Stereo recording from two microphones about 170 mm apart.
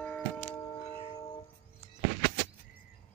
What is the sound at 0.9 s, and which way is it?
Music, 30° left (ahead or behind).